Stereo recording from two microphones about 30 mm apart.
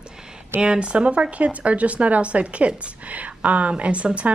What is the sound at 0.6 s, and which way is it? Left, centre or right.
A woman's voice, right.